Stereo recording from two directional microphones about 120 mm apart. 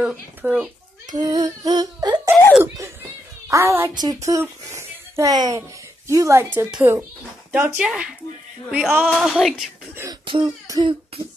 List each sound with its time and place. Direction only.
0.0 s speech: 10° right (ahead or behind)
1.1 s humming: 35° right (ahead or behind)
2.5 s a woman's voice: 20° right (ahead or behind)
3.9 s a woman's voice: 35° right (ahead or behind); by 9.7 s centre (ahead or behind)
10.2 s throat clearing: 45° right (ahead or behind)